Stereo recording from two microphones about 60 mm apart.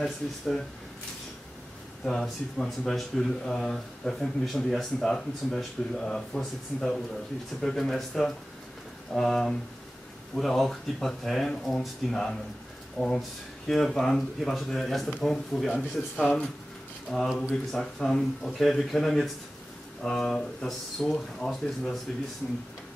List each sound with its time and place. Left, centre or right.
0.0 s speech: centre
2.0 s speech: centre
15.7 s speech: centre